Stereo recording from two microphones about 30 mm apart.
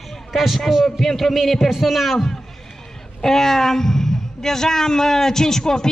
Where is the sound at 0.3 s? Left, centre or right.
Centre.